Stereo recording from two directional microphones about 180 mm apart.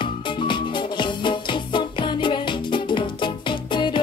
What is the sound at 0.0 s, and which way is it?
Music, 25° left (ahead or behind).